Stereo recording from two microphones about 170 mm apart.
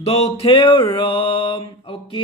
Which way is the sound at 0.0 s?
35° left (ahead or behind).